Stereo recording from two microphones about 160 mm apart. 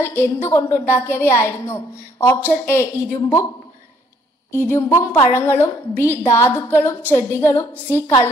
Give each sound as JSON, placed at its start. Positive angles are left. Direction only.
{"t": 0.0, "sound": "a woman's voice", "side_deg": 15}
{"t": 4.6, "sound": "a woman's voice", "side_deg": 15}